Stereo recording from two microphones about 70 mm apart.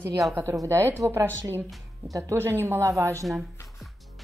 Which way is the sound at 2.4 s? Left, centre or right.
Right.